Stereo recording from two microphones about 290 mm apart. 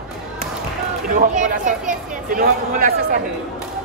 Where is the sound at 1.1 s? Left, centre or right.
Right.